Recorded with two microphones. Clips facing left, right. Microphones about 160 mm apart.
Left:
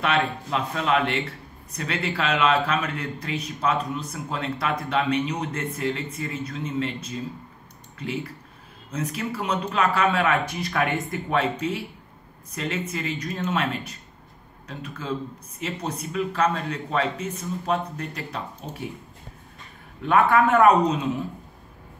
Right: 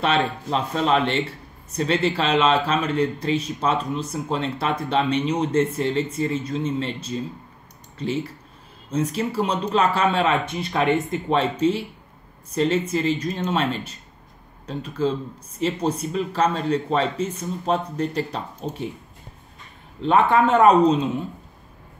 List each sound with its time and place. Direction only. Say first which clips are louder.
0.0 s a man's voice: right 2 dB; 30° right (ahead or behind)
20.0 s speech: right 1 dB; 25° right (ahead or behind)